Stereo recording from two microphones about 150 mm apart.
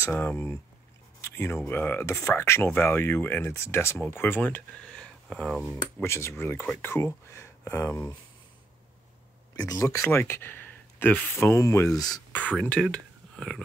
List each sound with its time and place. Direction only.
0.0 s speech: 15° left (ahead or behind)
1.2 s a sound: 15° left (ahead or behind)
1.7 s speech: 15° left (ahead or behind)
6.0 s speech: 15° left (ahead or behind)
9.6 s speech: 25° left (ahead or behind)
12.3 s speech: 10° left (ahead or behind)